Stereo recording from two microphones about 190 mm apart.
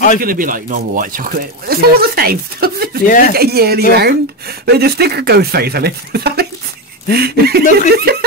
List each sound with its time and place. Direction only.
0.2 s speech: 45° right (ahead or behind)
3.1 s speech: 45° left (ahead or behind)
3.3 s speech: 55° right (ahead or behind)